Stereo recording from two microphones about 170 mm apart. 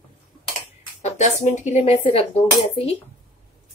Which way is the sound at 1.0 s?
40° left (ahead or behind).